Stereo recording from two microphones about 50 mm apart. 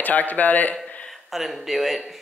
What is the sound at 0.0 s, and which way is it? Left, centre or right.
Speech, left.